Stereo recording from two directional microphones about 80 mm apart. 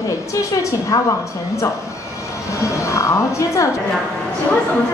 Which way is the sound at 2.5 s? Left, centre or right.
Left.